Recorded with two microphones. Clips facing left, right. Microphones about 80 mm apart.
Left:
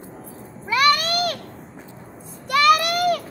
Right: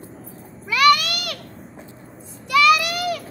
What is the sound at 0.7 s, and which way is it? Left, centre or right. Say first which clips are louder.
Meow: right 2 dB; left.